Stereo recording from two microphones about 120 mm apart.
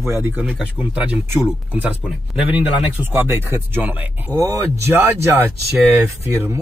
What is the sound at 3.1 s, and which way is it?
Speech, 15° right (ahead or behind).